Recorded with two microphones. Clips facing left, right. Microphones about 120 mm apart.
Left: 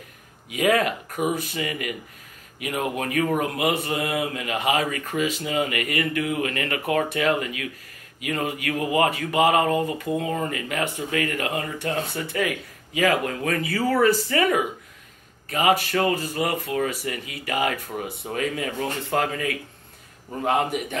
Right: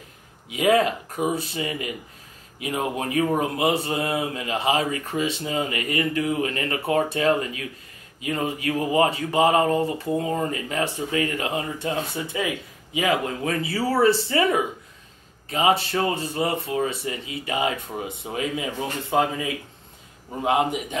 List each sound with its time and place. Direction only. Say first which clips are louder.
0.5 s speech: right 2 dB; 25° right (ahead or behind)